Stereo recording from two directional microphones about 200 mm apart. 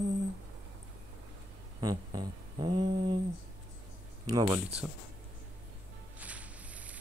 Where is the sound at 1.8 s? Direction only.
20° right (ahead or behind).